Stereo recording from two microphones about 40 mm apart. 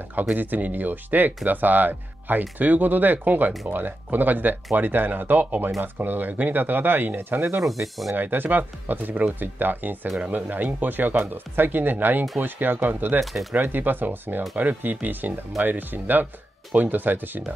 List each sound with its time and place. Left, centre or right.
0.1 s speech: right
7.6 s speech: centre
8.2 s speech: right
13.2 s speech: centre
13.6 s speech: right